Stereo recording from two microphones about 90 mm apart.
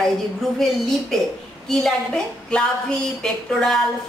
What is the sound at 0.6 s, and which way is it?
A woman's voice, 5° left (ahead or behind).